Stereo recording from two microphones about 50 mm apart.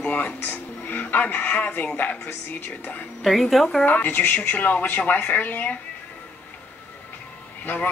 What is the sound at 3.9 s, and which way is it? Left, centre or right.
Speech, left.